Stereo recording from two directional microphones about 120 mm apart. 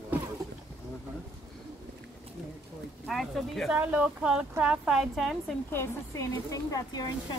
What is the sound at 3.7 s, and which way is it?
A woman's voice, 10° right (ahead or behind).